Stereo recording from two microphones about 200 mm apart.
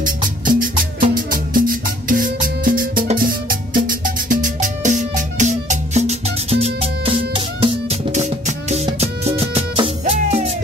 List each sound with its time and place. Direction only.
0.0 s music: 45° right (ahead or behind)